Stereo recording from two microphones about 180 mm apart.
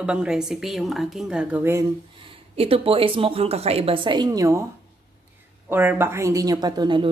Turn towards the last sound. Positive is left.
turn(degrees=-25)  # may be behind; listen again after turning